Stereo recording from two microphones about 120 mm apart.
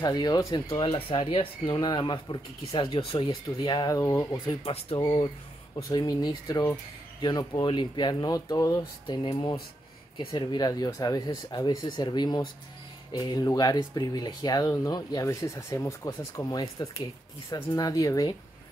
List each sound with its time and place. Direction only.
0.0 s speech: 35° left (ahead or behind)
3.4 s speech: 35° left (ahead or behind)
4.5 s speech: 50° left (ahead or behind)
5.9 s speech: 35° left (ahead or behind)
9.0 s speech: 40° left (ahead or behind)